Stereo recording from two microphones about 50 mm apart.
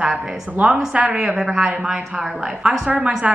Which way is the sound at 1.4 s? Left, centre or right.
Centre.